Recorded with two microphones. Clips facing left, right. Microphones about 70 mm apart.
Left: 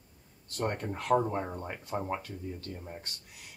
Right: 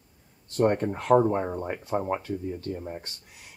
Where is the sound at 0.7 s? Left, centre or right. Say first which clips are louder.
Right 6 dB; right.